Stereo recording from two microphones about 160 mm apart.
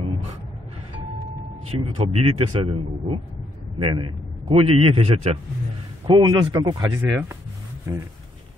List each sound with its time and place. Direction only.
1.7 s a man's voice: 40° right (ahead or behind)
6.0 s speech: 30° right (ahead or behind)